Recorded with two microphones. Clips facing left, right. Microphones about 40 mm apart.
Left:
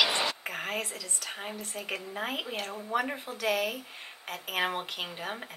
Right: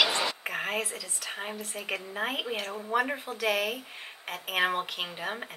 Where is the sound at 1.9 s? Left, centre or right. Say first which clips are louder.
Right 3 dB; centre.